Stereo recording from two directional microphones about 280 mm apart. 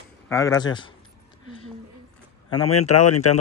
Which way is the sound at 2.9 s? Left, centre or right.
Left.